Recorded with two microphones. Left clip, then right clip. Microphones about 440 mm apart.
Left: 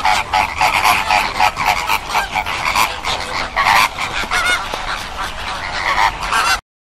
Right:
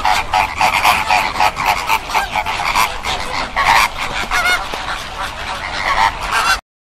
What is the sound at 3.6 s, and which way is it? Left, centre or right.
Goose, right.